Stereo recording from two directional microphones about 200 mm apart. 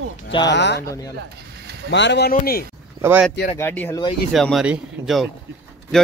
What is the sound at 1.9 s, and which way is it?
Speech, 60° left (ahead or behind).